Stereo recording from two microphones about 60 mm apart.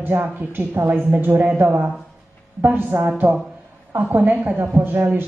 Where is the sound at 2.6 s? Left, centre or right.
Right.